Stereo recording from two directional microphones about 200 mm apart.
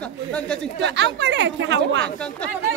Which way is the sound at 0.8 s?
60° right (ahead or behind).